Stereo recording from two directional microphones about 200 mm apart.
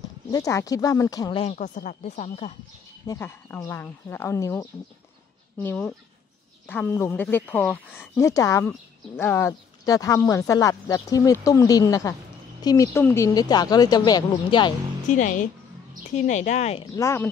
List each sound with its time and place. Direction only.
0.3 s speech: 15° left (ahead or behind)
1.4 s speech: 35° left (ahead or behind)
3.1 s speech: 10° left (ahead or behind)
15.0 s speech: 40° left (ahead or behind)
16.9 s speech: 15° left (ahead or behind)